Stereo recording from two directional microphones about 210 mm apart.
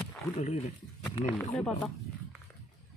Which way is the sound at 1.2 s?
10° left (ahead or behind).